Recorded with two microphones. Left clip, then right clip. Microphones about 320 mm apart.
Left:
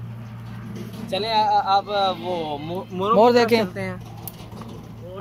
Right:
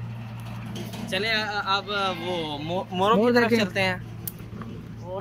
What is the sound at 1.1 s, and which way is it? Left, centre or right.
Speech, centre.